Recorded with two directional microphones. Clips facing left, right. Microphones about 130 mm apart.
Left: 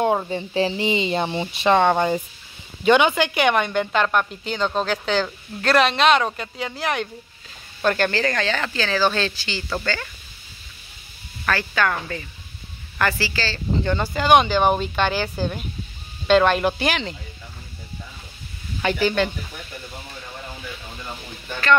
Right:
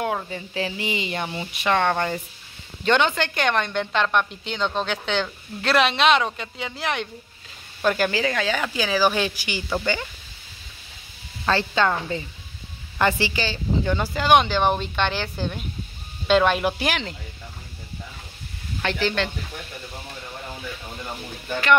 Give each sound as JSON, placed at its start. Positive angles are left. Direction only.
{"t": 0.0, "sound": "speech", "side_deg": 25}
{"t": 1.8, "sound": "a woman's voice", "side_deg": 15}
{"t": 11.4, "sound": "speech", "side_deg": -25}
{"t": 13.8, "sound": "a woman's voice", "side_deg": -5}
{"t": 18.8, "sound": "speech", "side_deg": 10}